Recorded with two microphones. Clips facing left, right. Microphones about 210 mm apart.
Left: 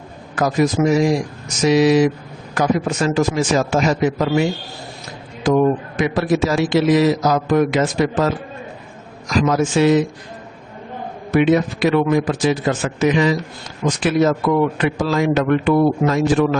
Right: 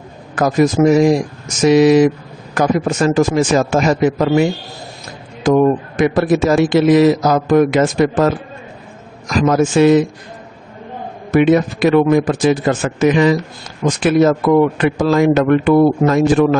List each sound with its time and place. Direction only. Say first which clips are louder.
0.4 s a man's voice: right 4 dB; 50° right (ahead or behind)
9.4 s a man's voice: right 4 dB; 50° right (ahead or behind)
11.3 s a man's voice: right 3 dB; 50° right (ahead or behind)